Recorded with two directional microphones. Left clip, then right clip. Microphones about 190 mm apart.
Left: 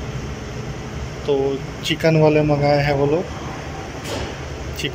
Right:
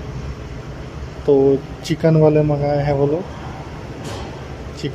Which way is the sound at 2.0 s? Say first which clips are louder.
Right 1 dB; 20° right (ahead or behind).